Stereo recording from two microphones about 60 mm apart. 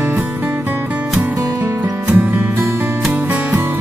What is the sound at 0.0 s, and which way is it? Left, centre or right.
Music, right.